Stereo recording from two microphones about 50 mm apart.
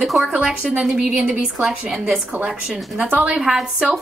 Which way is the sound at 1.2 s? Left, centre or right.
Right.